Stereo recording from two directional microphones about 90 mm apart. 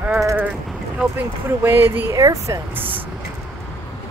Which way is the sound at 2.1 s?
40° right (ahead or behind).